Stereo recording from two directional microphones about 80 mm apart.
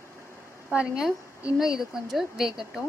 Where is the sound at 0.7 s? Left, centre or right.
Centre.